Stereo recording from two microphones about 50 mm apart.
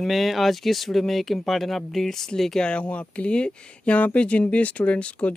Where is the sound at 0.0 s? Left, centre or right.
Centre.